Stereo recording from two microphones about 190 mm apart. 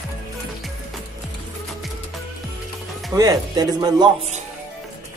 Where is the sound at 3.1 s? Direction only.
20° right (ahead or behind).